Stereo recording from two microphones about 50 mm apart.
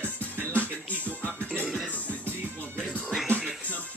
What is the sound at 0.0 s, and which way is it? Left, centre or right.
Music, left.